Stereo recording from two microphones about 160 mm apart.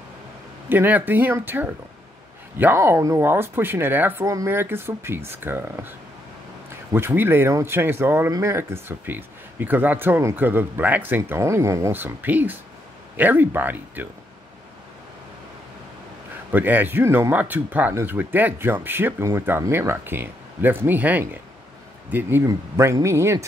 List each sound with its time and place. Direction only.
0.7 s speech: 10° right (ahead or behind)
16.5 s speech: 10° right (ahead or behind)